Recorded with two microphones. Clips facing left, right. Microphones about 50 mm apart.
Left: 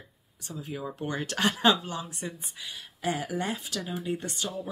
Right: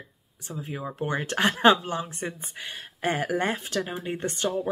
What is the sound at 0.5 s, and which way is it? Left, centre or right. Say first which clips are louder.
Speech: right 2 dB; right.